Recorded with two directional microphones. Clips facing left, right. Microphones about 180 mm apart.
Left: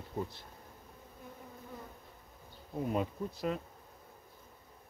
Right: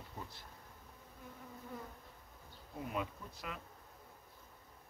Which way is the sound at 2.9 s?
35° left (ahead or behind).